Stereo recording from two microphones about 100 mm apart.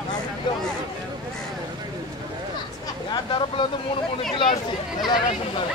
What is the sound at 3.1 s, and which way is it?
Speech, 55° left (ahead or behind).